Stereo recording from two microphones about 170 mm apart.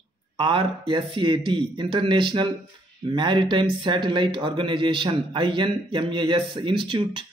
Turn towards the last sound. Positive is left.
turn(degrees=-30)  # may be behind; listen again after turning